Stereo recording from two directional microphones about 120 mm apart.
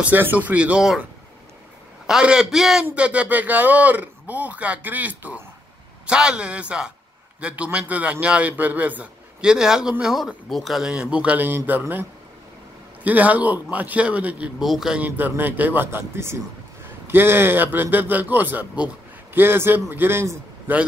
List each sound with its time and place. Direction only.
0.0 s a man's voice: 15° right (ahead or behind)
2.0 s a man's voice: 5° right (ahead or behind)